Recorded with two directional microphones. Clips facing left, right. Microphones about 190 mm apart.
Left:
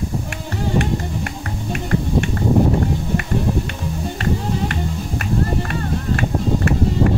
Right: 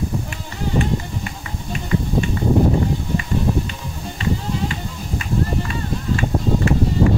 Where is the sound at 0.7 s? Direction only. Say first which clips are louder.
Even; 60° left (ahead or behind).